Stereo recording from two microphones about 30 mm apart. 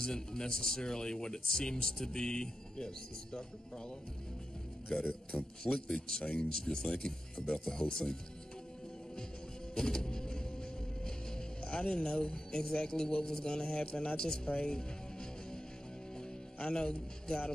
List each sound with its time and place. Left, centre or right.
0.0 s speech: left
4.9 s speech: left
5.9 s speech: left
7.4 s speech: left
7.9 s speech: left
9.8 s music: left
11.9 s speech: left
14.6 s music: left
16.6 s speech: left